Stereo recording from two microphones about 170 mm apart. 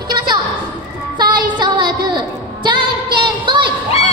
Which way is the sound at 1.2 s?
25° right (ahead or behind).